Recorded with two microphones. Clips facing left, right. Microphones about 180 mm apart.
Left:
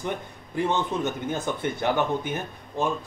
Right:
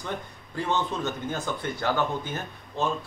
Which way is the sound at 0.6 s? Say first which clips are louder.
Left 3 dB; 20° left (ahead or behind).